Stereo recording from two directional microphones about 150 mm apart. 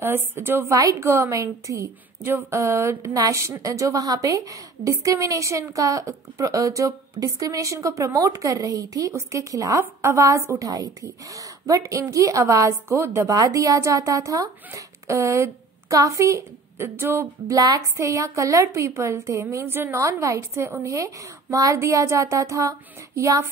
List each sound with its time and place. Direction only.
0.0 s a woman's voice: 15° right (ahead or behind)